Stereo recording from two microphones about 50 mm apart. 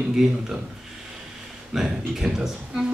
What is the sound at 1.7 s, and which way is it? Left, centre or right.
Speech, centre.